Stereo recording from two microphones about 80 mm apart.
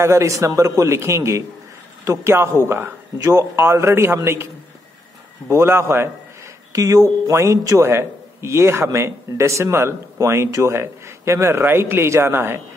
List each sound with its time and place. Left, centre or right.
0.0 s a man's voice: right
5.5 s a man's voice: right
6.7 s a man's voice: right